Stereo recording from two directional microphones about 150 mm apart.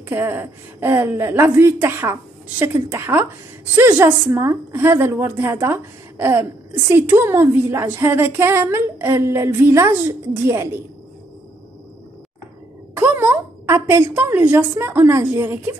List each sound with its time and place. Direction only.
0.1 s a woman's voice: 15° right (ahead or behind)
12.9 s a woman's voice: 10° right (ahead or behind)